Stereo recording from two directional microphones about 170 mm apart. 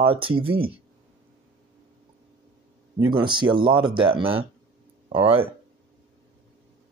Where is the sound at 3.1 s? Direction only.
30° right (ahead or behind).